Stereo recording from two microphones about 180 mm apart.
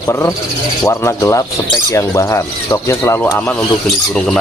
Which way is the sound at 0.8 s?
15° left (ahead or behind).